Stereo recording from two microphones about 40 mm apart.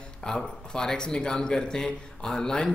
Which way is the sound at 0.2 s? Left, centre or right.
Centre.